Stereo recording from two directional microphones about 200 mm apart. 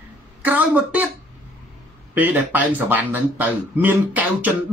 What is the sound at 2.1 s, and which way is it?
Speech, 10° right (ahead or behind).